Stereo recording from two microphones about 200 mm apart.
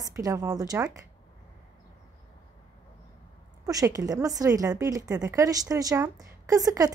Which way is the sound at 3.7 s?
15° right (ahead or behind).